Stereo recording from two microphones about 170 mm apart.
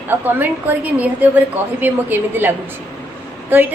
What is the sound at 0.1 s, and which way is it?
A woman's voice, 10° right (ahead or behind).